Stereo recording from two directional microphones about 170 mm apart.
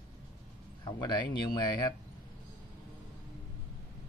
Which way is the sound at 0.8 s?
25° left (ahead or behind).